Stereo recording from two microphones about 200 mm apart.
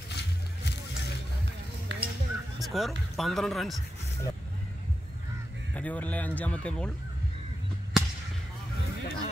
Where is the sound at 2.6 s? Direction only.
Centre (ahead or behind).